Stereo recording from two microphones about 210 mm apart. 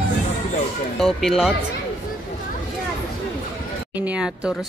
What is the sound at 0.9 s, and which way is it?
Speech, centre (ahead or behind).